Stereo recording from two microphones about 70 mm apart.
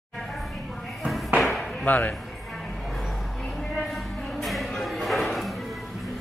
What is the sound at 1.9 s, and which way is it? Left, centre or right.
Speech, left.